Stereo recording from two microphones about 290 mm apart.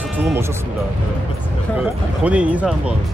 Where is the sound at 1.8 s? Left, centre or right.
Centre.